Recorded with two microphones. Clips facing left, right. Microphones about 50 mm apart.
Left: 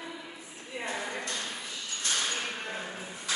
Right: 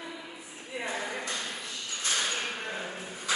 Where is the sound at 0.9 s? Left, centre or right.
Centre.